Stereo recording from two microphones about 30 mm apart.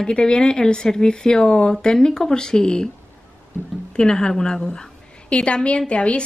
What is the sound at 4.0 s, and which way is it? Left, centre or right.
Speech, left.